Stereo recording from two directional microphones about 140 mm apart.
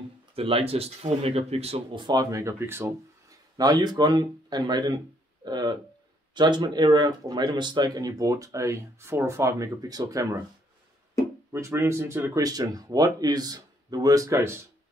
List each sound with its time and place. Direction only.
0.4 s speech: 45° right (ahead or behind); by 10.4 s 25° right (ahead or behind)
11.5 s speech: 20° right (ahead or behind)